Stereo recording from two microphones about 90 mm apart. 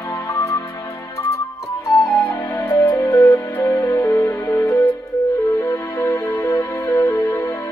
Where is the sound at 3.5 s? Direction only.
25° left (ahead or behind).